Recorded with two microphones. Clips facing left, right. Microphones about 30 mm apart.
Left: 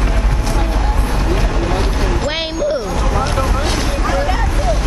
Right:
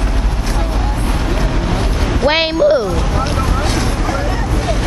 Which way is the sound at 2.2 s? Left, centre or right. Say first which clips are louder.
Right 10 dB; right.